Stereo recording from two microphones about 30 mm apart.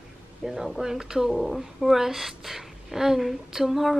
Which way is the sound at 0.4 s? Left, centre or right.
Centre.